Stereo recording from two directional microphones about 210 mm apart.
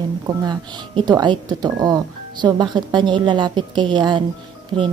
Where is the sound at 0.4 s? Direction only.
20° right (ahead or behind).